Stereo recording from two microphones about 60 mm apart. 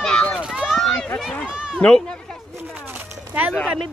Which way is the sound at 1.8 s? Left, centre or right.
Centre.